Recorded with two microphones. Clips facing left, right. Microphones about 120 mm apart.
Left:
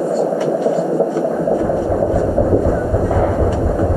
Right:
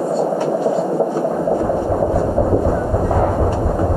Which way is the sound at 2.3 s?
15° right (ahead or behind).